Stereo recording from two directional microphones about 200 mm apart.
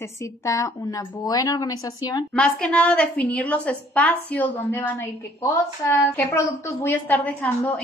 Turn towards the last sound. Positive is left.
turn(degrees=5)  # may be behind; listen again after turning